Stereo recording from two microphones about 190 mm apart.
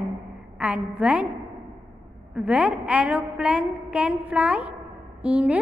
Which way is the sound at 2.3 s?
5° right (ahead or behind).